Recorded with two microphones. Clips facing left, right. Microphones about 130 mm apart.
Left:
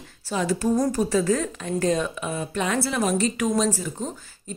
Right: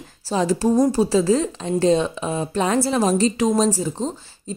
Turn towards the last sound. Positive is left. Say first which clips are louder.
# right 6 dB
turn(degrees=-30)  # may be behind; listen again after turning